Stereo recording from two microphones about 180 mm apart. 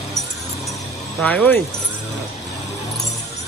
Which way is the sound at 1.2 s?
10° left (ahead or behind).